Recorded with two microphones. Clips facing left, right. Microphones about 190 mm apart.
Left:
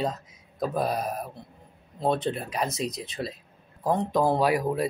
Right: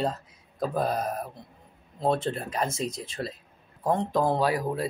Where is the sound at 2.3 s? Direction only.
10° left (ahead or behind).